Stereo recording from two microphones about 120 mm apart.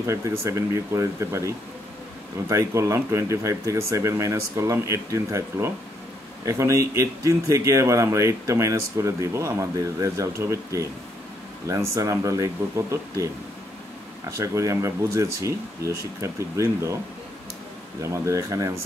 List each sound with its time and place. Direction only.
0.0 s speech: 25° right (ahead or behind)
18.0 s speech: 25° right (ahead or behind)